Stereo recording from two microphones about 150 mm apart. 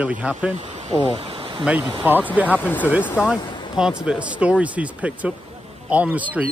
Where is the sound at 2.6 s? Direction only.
10° left (ahead or behind).